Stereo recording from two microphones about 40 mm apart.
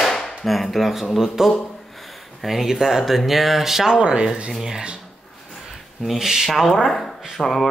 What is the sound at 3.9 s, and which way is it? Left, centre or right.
Speech, right.